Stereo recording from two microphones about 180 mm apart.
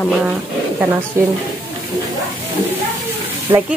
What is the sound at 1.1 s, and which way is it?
Speech, 15° right (ahead or behind).